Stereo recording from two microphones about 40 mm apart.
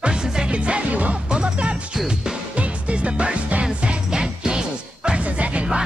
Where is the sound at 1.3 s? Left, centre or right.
Right.